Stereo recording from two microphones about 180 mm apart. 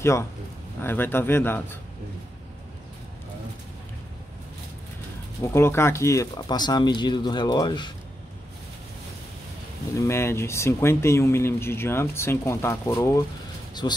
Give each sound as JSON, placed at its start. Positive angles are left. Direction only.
{"t": 0.0, "sound": "speech", "side_deg": 15}
{"t": 5.4, "sound": "speech", "side_deg": 15}
{"t": 9.9, "sound": "speech", "side_deg": 15}